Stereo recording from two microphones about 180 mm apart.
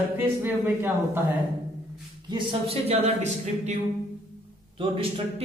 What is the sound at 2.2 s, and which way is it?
Speech, 25° right (ahead or behind).